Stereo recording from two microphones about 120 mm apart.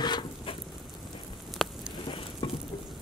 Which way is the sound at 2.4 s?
35° left (ahead or behind).